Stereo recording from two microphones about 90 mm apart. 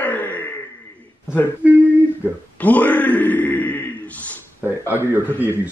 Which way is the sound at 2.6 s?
15° left (ahead or behind).